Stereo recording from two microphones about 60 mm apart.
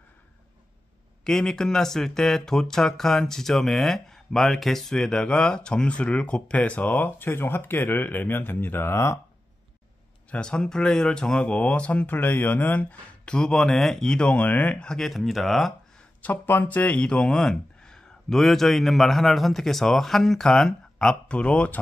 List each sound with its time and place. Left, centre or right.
1.2 s speech: centre; by 9.2 s left
10.3 s speech: centre
12.1 s speech: left
13.2 s speech: centre
14.8 s speech: centre
16.2 s speech: left